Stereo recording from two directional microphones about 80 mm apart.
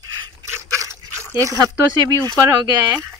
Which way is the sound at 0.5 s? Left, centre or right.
Right.